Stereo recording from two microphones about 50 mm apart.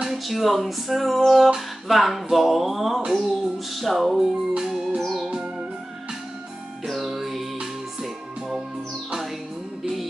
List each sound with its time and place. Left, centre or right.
0.3 s speech: centre
3.1 s music: centre
5.2 s music: centre
6.9 s music: centre